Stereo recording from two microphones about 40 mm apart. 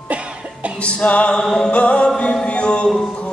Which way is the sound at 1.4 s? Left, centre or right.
Centre.